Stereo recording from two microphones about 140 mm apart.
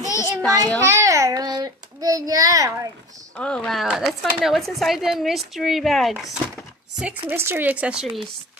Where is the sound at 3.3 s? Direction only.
5° left (ahead or behind).